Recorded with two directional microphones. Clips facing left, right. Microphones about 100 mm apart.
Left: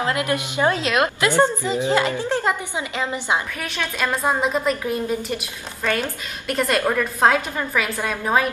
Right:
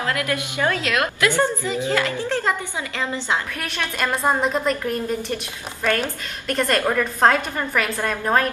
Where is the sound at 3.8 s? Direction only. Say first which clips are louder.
Even; 10° right (ahead or behind).